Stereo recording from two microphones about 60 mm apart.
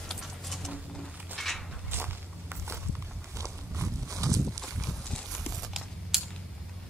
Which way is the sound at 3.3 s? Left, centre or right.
Right.